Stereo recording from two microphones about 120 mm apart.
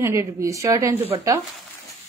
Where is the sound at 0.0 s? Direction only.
25° right (ahead or behind).